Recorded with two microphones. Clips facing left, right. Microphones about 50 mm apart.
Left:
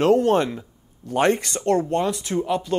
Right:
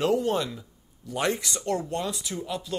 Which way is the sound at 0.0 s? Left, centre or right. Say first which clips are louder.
Left 7 dB; left.